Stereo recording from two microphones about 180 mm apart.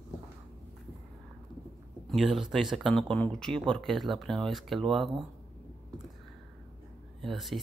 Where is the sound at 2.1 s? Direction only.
Centre (ahead or behind).